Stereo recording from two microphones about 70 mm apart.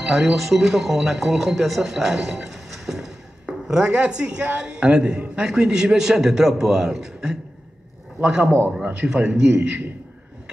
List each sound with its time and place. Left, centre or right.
0.0 s a man's voice: centre
8.5 s a man's voice: right
8.8 s a man's voice: centre
9.5 s a man's voice: right